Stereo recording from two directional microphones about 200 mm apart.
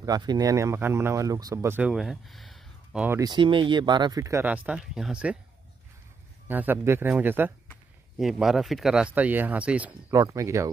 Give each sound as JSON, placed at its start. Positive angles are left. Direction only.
{"t": 0.0, "sound": "speech", "side_deg": -20}
{"t": 3.2, "sound": "speech", "side_deg": -20}
{"t": 6.4, "sound": "speech", "side_deg": -10}